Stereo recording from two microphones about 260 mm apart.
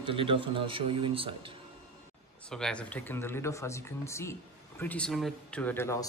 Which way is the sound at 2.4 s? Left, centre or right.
Centre.